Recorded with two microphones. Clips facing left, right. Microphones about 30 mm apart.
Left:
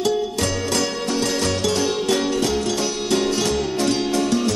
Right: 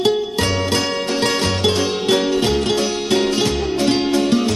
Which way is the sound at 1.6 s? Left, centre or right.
Right.